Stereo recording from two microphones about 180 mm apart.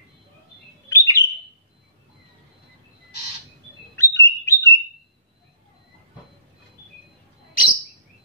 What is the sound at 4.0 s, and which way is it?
Bird, 15° left (ahead or behind).